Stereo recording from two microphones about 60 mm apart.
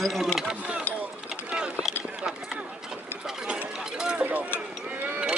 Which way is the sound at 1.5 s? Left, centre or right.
Centre.